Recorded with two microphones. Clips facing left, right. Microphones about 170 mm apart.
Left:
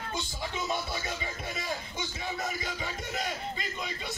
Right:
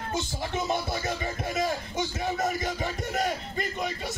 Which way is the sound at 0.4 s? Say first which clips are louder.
Right 3 dB; 55° right (ahead or behind).